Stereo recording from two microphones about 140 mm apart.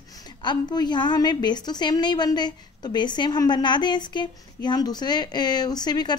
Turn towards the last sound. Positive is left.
turn(degrees=30)  # may be behind; listen again after turning